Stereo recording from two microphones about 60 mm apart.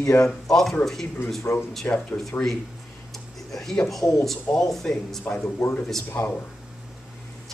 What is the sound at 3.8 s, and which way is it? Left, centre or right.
Speech, centre.